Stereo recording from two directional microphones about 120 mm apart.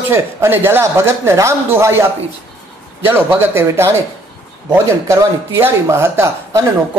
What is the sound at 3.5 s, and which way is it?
Speech, 20° right (ahead or behind).